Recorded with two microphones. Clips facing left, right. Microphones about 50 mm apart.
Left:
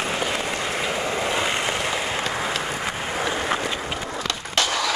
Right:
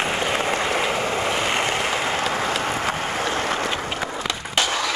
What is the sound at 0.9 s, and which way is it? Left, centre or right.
Vehicle, right.